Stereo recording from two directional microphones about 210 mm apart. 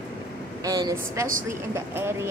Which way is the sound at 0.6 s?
15° right (ahead or behind).